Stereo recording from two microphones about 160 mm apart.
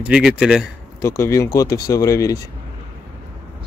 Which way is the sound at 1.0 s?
20° left (ahead or behind).